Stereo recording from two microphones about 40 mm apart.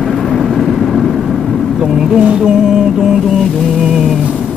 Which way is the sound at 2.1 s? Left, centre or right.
Right.